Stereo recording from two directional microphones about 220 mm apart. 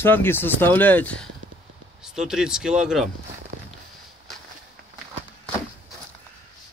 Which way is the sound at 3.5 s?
45° right (ahead or behind).